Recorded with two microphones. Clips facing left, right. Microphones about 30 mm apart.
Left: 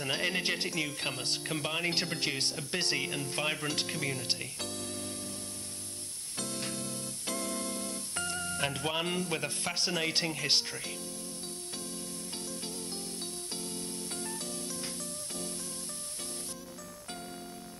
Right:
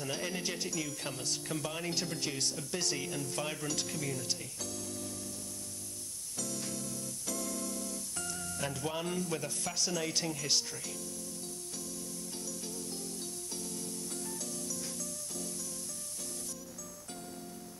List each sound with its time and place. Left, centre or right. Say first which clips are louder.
0.0 s speech: left 5 dB; left
6.3 s music: left 2 dB; left
14.1 s music: left 2 dB; left